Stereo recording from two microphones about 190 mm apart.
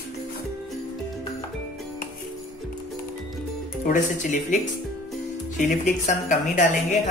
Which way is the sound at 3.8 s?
40° left (ahead or behind).